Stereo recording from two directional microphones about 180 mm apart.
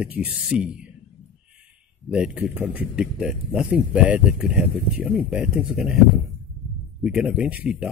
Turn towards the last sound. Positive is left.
turn(degrees=-5)  # may be behind; listen again after turning